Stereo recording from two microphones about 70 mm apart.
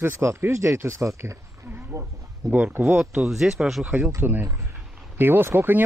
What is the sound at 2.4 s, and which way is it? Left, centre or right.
Speech, right.